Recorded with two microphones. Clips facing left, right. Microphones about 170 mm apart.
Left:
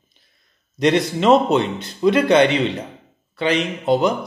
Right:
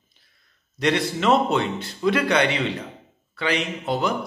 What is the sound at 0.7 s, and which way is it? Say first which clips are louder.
A man's voice: left 5 dB; 20° left (ahead or behind).